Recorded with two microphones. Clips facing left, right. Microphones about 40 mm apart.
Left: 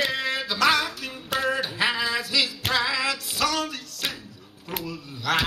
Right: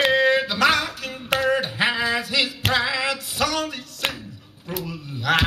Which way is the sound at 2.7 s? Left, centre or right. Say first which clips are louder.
Right 1 dB; right.